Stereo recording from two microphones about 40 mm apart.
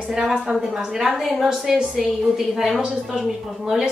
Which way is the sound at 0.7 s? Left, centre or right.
Centre.